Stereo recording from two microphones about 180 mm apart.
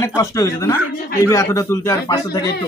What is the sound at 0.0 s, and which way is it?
A man's voice, 15° left (ahead or behind).